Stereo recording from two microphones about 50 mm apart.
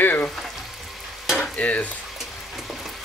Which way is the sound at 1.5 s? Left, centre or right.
Left.